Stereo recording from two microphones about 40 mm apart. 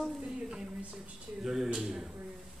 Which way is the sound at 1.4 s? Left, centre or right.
Centre.